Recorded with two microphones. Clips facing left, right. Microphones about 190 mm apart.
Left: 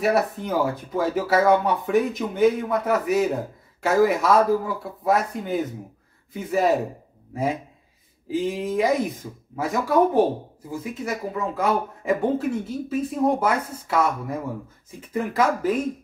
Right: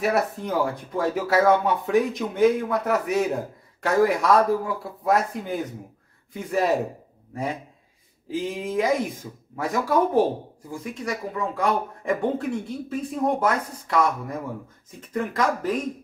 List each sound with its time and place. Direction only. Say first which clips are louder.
0.0 s speech: left 2 dB; centre (ahead or behind)
8.3 s speech: left 3 dB; centre (ahead or behind)